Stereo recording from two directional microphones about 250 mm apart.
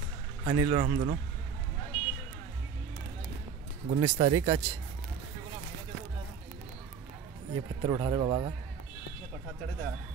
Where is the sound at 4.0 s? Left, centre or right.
Right.